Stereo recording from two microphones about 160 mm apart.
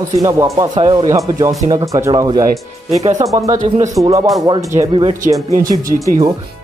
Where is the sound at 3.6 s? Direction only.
35° right (ahead or behind).